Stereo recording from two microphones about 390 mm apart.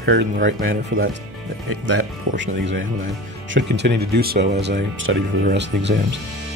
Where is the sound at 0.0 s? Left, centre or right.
Right.